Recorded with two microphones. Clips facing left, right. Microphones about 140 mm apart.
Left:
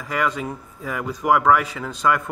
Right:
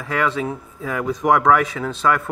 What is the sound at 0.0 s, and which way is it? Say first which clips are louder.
Speech: right 2 dB; 10° left (ahead or behind).